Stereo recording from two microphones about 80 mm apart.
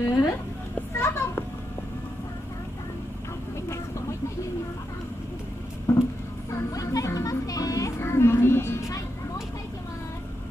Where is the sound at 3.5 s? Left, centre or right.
Left.